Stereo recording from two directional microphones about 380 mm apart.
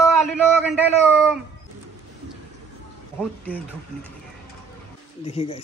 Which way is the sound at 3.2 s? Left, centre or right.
Centre.